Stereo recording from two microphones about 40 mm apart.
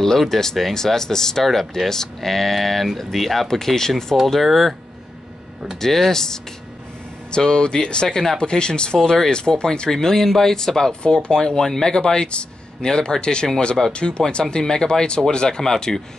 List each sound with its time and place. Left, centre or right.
0.0 s speech: centre
5.8 s speech: centre
7.2 s speech: left